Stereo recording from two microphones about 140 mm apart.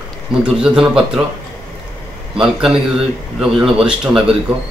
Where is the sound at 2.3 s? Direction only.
5° right (ahead or behind).